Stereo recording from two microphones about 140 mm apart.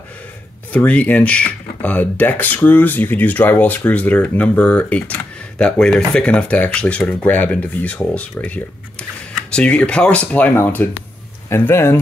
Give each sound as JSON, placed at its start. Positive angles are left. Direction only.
{"t": 0.7, "sound": "speech", "side_deg": 10}